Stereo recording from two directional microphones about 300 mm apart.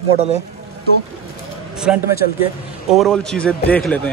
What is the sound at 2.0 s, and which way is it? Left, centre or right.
Speech, left.